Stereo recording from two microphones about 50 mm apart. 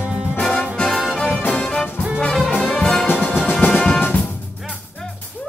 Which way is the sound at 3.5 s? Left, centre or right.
Left.